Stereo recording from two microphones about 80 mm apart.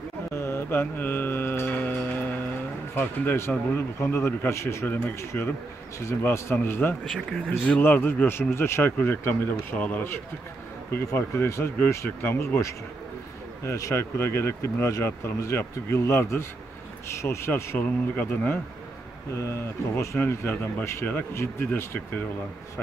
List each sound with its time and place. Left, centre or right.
0.3 s mantra: left
3.0 s speech: left
4.8 s speech: left
11.1 s speech: left
17.7 s speech: left
20.2 s speech: left
20.8 s speech: left